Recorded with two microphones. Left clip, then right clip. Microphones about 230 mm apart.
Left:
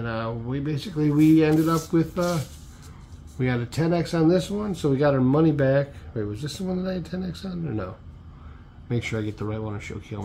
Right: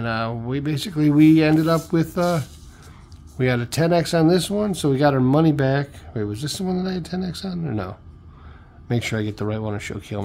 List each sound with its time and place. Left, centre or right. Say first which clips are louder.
0.0 s speech: right 5 dB; right